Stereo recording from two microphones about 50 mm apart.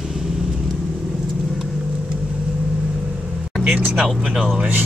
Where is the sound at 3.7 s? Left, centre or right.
Right.